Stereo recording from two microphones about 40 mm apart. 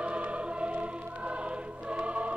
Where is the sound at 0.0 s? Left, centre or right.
Right.